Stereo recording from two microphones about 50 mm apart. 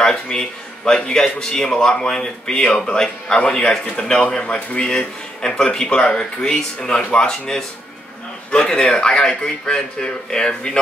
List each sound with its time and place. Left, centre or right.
0.0 s speech: centre